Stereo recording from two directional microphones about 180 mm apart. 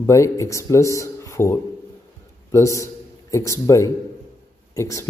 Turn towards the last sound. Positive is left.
turn(degrees=15)  # may be behind; listen again after turning